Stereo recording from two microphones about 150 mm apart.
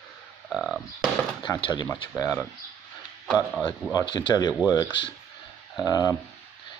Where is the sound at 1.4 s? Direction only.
30° left (ahead or behind).